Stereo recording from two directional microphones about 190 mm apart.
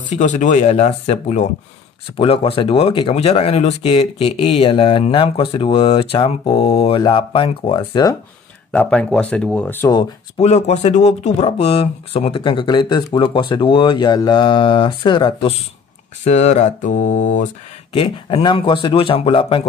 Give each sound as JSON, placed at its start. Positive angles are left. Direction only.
{"t": 0.1, "sound": "speech", "side_deg": 40}
{"t": 8.7, "sound": "speech", "side_deg": 5}
{"t": 9.9, "sound": "speech", "side_deg": 35}
{"t": 16.3, "sound": "speech", "side_deg": 35}
{"t": 17.9, "sound": "speech", "side_deg": 30}